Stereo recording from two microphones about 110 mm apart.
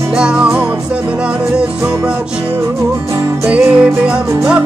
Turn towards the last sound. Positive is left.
turn(degrees=-10)  # may be behind; listen again after turning